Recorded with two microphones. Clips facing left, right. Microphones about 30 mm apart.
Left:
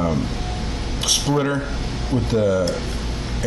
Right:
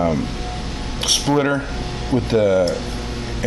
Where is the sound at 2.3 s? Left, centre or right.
Right.